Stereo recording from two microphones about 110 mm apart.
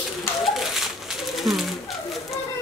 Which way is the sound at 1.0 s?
Centre (ahead or behind).